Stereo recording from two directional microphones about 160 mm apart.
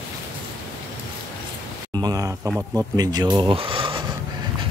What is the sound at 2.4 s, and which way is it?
Speech, 10° right (ahead or behind).